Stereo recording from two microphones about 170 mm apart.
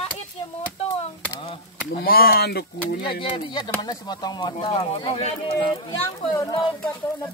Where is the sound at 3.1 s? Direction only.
30° left (ahead or behind).